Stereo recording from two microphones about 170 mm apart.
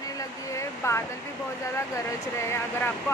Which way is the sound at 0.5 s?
15° left (ahead or behind).